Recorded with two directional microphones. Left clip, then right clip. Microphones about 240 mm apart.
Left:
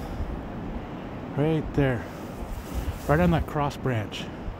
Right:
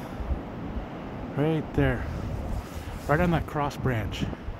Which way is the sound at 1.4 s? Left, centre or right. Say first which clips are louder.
Left 1 dB; centre.